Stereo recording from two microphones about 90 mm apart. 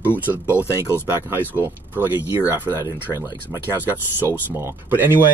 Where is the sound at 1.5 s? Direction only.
25° right (ahead or behind).